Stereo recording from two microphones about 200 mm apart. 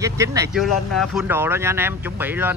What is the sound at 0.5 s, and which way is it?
Speech, centre (ahead or behind).